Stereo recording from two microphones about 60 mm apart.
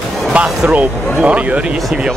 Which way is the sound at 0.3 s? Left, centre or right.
Right.